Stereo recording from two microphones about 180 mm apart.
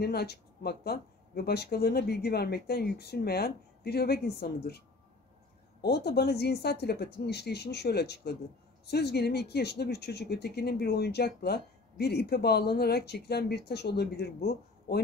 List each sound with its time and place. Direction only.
0.0 s speech: 60° left (ahead or behind)